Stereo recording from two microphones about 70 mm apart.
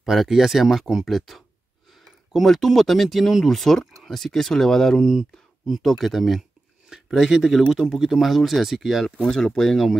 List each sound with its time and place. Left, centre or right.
0.0 s speech: centre